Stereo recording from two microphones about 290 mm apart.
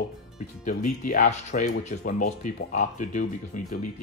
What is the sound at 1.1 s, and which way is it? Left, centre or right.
Speech, left.